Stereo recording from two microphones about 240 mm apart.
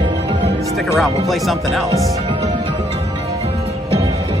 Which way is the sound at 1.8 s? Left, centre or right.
Centre.